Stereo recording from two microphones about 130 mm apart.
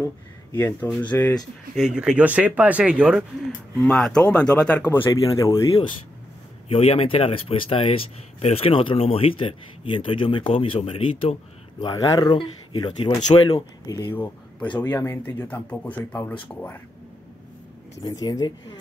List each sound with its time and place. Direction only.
0.0 s speech: 20° left (ahead or behind)
1.8 s speech: 5° right (ahead or behind)
3.7 s speech: 5° left (ahead or behind)
5.1 s speech: 35° left (ahead or behind)
6.7 s speech: 45° left (ahead or behind)
11.8 s speech: 30° left (ahead or behind)
13.8 s speech: 30° left (ahead or behind)
14.1 s speech: 15° left (ahead or behind)
18.0 s speech: 30° left (ahead or behind)